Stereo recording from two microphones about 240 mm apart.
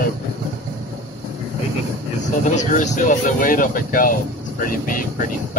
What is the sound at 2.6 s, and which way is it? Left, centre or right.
Speech, left.